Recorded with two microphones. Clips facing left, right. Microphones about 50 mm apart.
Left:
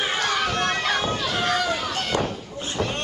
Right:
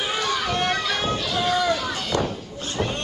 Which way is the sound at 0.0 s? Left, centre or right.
Left.